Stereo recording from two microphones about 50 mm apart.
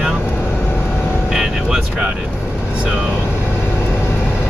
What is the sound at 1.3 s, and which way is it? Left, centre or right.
Speech, centre.